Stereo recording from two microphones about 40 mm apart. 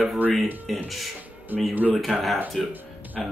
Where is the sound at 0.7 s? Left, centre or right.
Centre.